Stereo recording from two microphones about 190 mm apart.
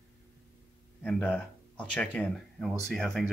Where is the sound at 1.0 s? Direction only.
5° left (ahead or behind).